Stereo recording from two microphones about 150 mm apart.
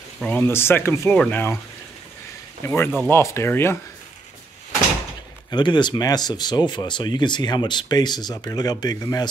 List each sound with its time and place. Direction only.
0.4 s speech: 15° left (ahead or behind)
2.6 s speech: 15° left (ahead or behind)
5.5 s speech: 30° left (ahead or behind)